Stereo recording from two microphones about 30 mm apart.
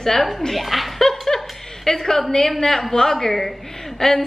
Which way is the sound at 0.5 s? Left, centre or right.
Centre.